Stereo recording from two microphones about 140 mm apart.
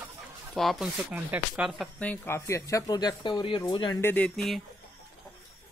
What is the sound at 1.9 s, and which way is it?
Speech, 10° left (ahead or behind).